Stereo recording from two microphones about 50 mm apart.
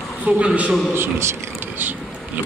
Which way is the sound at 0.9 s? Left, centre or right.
Right.